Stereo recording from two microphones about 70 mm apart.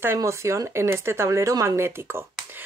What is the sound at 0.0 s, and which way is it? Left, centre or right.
Speech, right.